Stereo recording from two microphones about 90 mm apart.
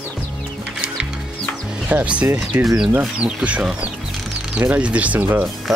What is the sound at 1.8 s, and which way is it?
Speech, 15° right (ahead or behind).